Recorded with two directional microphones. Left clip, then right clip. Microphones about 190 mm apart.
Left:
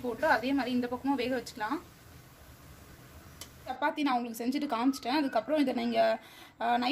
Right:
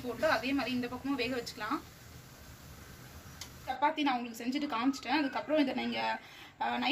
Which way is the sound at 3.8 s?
55° left (ahead or behind).